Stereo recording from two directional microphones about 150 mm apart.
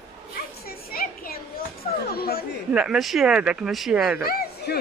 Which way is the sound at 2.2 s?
90° left.